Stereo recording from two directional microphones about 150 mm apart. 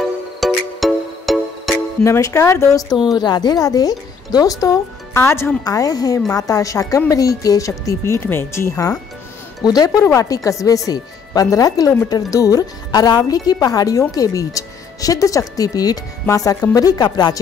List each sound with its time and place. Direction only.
0.4 s music: centre (ahead or behind)
2.0 s speech: 20° left (ahead or behind)